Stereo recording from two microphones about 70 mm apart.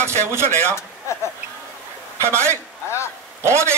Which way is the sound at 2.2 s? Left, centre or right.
Right.